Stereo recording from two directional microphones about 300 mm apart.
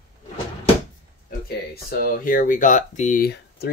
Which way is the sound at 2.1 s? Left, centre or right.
Left.